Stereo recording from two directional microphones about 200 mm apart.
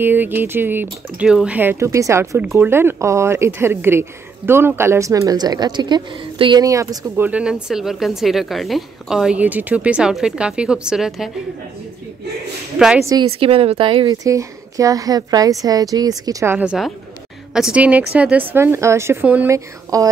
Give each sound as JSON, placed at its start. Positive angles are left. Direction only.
{"t": 0.0, "sound": "a woman's voice", "side_deg": -10}
{"t": 7.2, "sound": "speech", "side_deg": -5}
{"t": 12.7, "sound": "speech", "side_deg": -5}
{"t": 13.0, "sound": "a woman's voice", "side_deg": -20}